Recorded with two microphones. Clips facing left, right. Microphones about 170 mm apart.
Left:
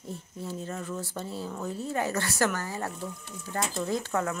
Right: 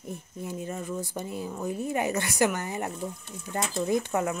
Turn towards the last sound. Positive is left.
turn(degrees=-20)  # may be behind; listen again after turning